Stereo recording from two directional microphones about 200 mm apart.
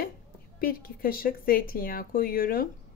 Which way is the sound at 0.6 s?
45° left (ahead or behind).